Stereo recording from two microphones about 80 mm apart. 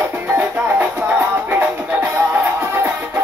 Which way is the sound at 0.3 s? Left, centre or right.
Right.